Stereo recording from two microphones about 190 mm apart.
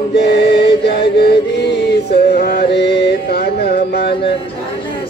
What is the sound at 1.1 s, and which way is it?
Music, 60° left (ahead or behind).